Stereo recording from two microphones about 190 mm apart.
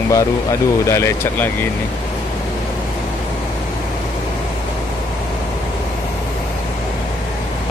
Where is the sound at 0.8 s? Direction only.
15° left (ahead or behind).